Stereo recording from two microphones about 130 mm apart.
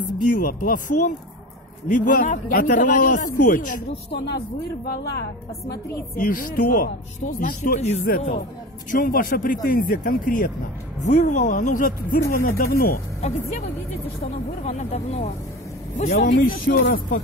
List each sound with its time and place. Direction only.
0.2 s a man's voice: 90° left
6.1 s a man's voice: 90° left
11.0 s speech: 65° left (ahead or behind)
12.3 s a man's voice: 90° left
14.7 s speech: 60° left (ahead or behind)
16.0 s a man's voice: 90° left